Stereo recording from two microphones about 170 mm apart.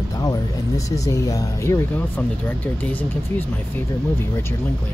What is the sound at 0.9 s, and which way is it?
Speech, 20° left (ahead or behind).